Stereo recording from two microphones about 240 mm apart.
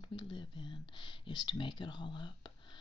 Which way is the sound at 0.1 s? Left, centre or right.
Centre.